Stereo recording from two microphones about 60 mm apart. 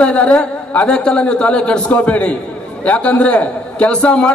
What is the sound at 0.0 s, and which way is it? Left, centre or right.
A man's voice, centre.